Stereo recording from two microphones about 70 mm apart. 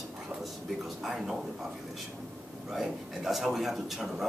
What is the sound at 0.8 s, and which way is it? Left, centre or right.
Speech, centre.